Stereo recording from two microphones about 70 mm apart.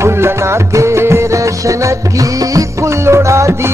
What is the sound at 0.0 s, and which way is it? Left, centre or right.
Music, right.